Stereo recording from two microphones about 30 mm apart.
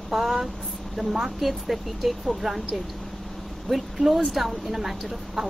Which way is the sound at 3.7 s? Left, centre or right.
Centre.